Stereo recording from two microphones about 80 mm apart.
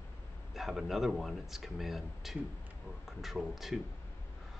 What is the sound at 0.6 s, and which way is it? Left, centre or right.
Speech, centre.